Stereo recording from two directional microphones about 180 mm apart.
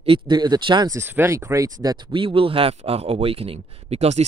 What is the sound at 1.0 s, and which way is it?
Speech, 15° right (ahead or behind).